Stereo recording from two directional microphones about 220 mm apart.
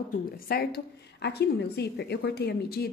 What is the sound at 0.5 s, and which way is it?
A woman's voice, 45° left (ahead or behind).